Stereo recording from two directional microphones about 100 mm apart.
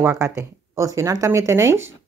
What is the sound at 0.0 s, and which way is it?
Speech, 30° right (ahead or behind).